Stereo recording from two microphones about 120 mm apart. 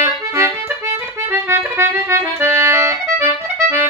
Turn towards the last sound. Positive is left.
turn(degrees=-20)  # may be behind; listen again after turning